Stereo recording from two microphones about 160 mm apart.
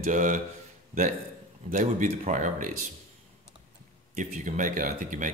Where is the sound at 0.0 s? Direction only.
50° right (ahead or behind).